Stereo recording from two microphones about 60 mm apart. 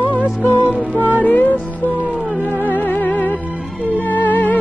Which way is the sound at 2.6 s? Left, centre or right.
Left.